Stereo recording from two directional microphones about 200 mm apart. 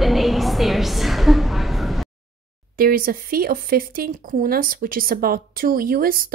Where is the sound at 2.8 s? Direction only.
45° right (ahead or behind).